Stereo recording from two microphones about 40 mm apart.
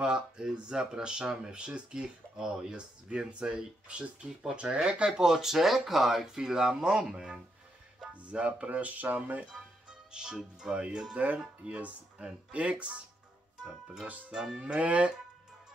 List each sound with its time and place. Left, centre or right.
0.0 s speech: right
9.5 s speech: right
13.6 s speech: centre